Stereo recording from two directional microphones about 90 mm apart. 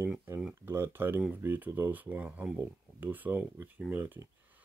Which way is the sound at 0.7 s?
25° right (ahead or behind).